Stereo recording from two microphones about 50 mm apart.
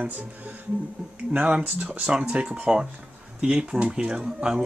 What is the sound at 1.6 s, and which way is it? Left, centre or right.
Speech, right.